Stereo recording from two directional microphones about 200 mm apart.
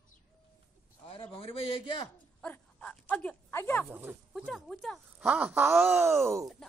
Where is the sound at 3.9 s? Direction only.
10° right (ahead or behind).